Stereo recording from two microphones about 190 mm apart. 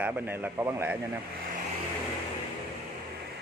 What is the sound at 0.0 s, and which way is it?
Speech, 10° right (ahead or behind).